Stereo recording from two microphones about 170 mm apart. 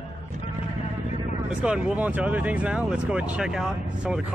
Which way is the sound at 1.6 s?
5° right (ahead or behind).